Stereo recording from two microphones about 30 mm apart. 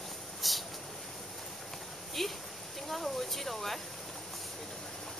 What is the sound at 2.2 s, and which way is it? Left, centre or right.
Speech, centre.